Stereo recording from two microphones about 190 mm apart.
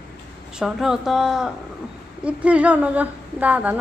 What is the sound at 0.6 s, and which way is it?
A woman's voice, centre (ahead or behind).